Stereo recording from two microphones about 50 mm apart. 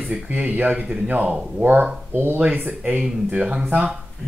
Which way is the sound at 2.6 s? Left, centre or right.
Right.